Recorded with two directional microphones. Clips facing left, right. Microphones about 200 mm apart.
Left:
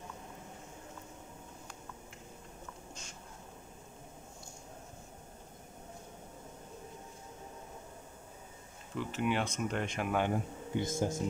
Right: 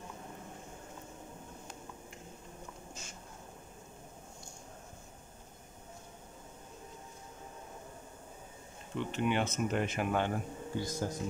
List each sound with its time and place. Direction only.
8.9 s speech: 5° left (ahead or behind)
10.1 s speech: 15° left (ahead or behind)